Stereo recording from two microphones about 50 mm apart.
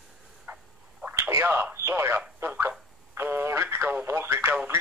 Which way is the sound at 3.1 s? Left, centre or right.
Right.